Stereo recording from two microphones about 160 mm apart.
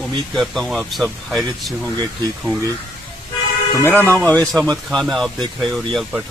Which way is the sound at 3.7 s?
15° left (ahead or behind).